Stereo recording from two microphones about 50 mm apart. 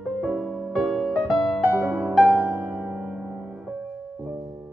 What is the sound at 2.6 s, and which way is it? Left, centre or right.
Music, right.